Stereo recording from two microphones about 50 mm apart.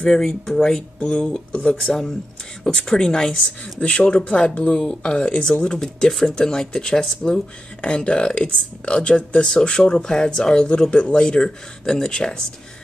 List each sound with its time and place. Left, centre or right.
0.0 s speech: centre
0.9 s speech: left
3.8 s speech: left